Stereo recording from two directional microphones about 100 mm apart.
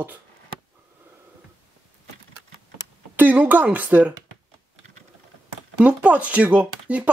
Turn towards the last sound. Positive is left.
turn(degrees=-15)  # may be behind; listen again after turning